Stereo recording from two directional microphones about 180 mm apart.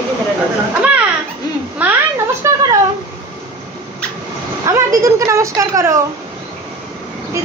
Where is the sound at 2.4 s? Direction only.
20° right (ahead or behind).